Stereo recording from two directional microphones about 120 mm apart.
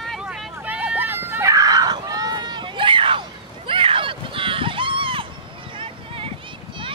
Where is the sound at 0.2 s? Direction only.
5° right (ahead or behind).